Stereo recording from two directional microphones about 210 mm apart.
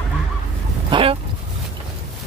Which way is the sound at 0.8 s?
25° right (ahead or behind).